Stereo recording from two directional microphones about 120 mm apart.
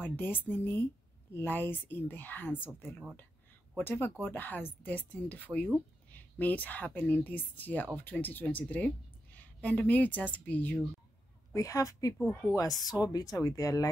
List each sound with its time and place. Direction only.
0.0 s a woman's voice: 15° left (ahead or behind)
3.7 s a woman's voice: 15° left (ahead or behind)
11.5 s speech: 25° left (ahead or behind)
12.2 s a woman's voice: 10° left (ahead or behind)
12.8 s speech: 30° left (ahead or behind)